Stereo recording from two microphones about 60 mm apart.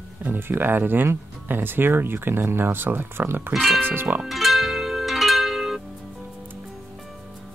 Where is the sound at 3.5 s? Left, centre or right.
Centre.